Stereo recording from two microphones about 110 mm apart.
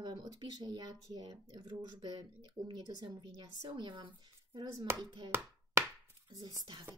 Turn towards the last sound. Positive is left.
turn(degrees=-40)  # may be behind; listen again after turning